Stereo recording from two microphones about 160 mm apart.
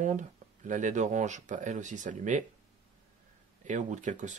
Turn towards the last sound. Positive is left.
turn(degrees=-50)  # may be behind; listen again after turning